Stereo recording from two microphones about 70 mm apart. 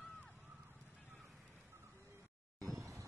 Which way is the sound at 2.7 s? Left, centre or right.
Right.